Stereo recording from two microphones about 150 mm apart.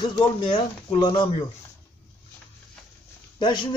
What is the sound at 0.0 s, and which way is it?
Speech, 30° left (ahead or behind).